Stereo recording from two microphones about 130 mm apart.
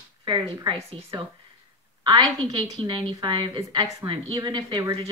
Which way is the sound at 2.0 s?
35° right (ahead or behind).